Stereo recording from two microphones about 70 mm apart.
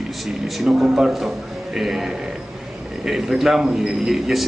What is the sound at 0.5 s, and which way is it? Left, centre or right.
A man's voice, centre.